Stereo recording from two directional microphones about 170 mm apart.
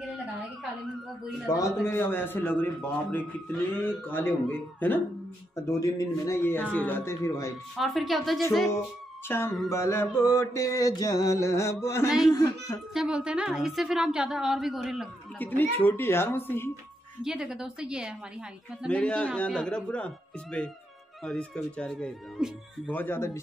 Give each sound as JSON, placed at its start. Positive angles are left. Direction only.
{"t": 1.5, "sound": "mantra", "side_deg": 15}
{"t": 7.7, "sound": "a woman's voice", "side_deg": 0}
{"t": 9.3, "sound": "mantra", "side_deg": 15}
{"t": 12.3, "sound": "a child's voice", "side_deg": 20}
{"t": 12.9, "sound": "a woman's voice", "side_deg": -5}
{"t": 15.3, "sound": "mantra", "side_deg": 10}
{"t": 17.2, "sound": "a woman's voice", "side_deg": -5}
{"t": 18.9, "sound": "mantra", "side_deg": 5}
{"t": 21.2, "sound": "mantra", "side_deg": 5}